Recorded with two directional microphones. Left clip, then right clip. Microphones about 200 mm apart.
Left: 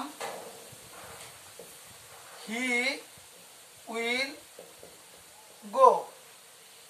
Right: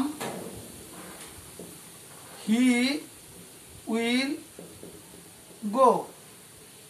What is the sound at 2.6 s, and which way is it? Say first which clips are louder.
Speech: right 2 dB; 10° left (ahead or behind).